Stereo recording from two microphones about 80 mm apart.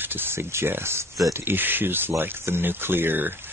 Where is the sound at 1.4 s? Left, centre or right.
Right.